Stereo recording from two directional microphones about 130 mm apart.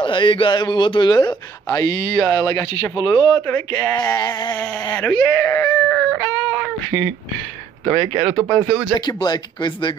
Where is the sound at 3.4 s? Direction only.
15° left (ahead or behind).